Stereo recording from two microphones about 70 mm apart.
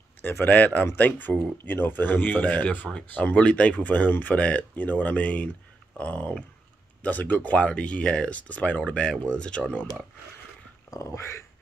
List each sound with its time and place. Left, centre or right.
0.2 s speech: left
11.0 s speech: left